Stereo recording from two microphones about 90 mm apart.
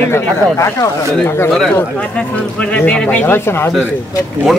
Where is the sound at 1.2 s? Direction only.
25° left (ahead or behind).